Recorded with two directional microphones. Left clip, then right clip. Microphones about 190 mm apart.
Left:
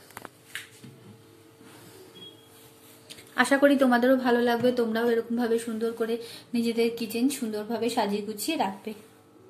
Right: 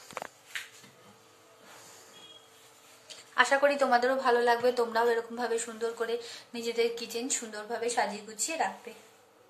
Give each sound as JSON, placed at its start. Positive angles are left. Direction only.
{"t": 3.3, "sound": "a woman's voice", "side_deg": 10}